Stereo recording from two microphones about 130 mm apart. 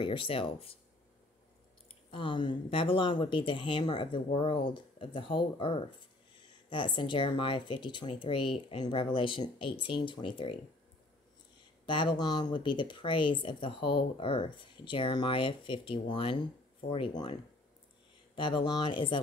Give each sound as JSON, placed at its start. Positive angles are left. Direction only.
{"t": 0.0, "sound": "speech", "side_deg": 45}
{"t": 2.0, "sound": "speech", "side_deg": 40}
{"t": 11.8, "sound": "speech", "side_deg": 40}